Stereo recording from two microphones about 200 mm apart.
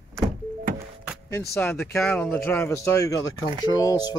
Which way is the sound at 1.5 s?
10° left (ahead or behind).